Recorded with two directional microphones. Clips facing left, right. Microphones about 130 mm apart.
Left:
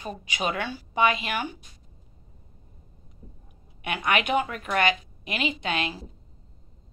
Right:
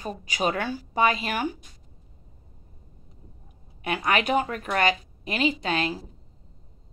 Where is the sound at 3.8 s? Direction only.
35° right (ahead or behind).